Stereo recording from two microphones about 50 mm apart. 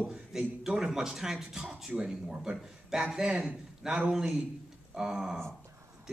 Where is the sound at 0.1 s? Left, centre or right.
Centre.